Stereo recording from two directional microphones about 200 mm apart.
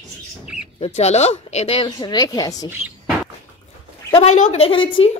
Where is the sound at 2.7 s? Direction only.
5° right (ahead or behind).